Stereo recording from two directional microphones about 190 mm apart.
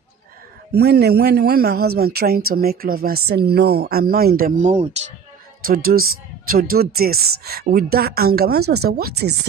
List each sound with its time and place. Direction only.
0.7 s a man's voice: 60° right (ahead or behind); by 5.1 s 35° right (ahead or behind)
5.7 s a man's voice: 50° right (ahead or behind)